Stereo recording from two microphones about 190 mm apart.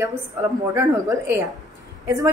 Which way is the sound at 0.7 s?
15° right (ahead or behind).